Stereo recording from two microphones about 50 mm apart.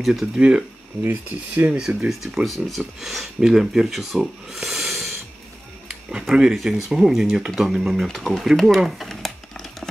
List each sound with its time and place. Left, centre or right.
0.0 s speech: centre
0.4 s speech: centre
1.0 s speech: right
2.0 s speech: centre
8.6 s a sound: centre